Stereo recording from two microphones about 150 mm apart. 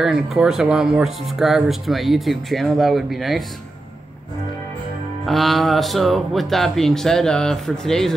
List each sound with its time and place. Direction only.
0.0 s speech: 5° right (ahead or behind)
5.2 s speech: centre (ahead or behind)